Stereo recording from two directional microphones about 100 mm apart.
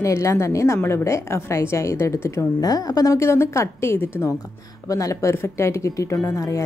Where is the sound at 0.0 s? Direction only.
30° left (ahead or behind).